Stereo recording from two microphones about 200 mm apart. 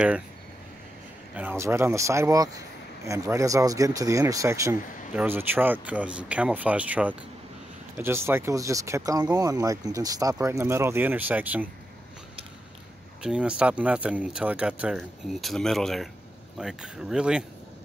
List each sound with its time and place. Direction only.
1.3 s speech: 10° right (ahead or behind)
13.2 s speech: 5° right (ahead or behind)